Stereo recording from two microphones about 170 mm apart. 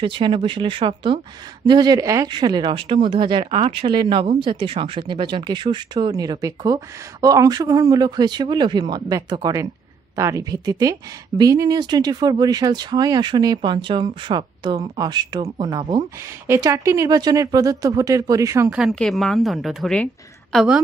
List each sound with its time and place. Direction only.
0.0 s speech: 30° right (ahead or behind)
18.7 s a woman's voice: centre (ahead or behind)